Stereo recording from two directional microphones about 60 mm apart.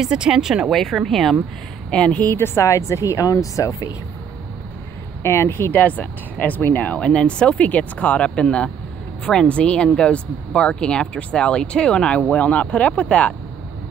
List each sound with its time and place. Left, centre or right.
0.0 s speech: centre
0.7 s speech: centre
1.9 s speech: centre
2.2 s speech: left
5.2 s speech: left
5.7 s speech: left
7.0 s speech: centre